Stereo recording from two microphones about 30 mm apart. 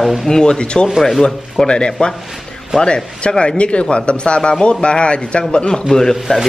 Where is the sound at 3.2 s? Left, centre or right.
Left.